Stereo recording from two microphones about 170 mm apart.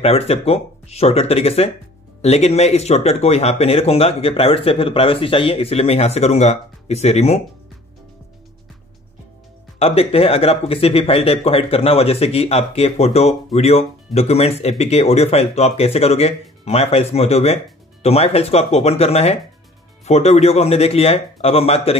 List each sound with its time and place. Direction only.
0.0 s speech: 35° left (ahead or behind)
9.8 s speech: 35° left (ahead or behind)